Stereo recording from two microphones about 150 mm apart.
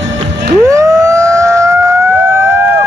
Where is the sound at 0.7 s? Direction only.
20° right (ahead or behind).